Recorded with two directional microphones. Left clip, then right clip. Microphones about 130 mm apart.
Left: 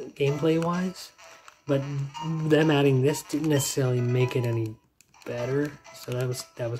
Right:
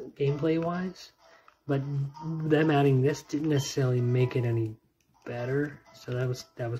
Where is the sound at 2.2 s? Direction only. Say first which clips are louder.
Left 3 dB; 15° left (ahead or behind).